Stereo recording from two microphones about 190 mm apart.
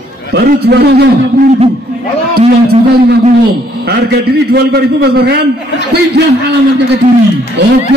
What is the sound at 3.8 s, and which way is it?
A man's voice, 55° right (ahead or behind).